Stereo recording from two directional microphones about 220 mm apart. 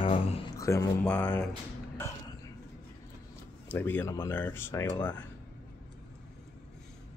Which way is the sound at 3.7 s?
10° left (ahead or behind).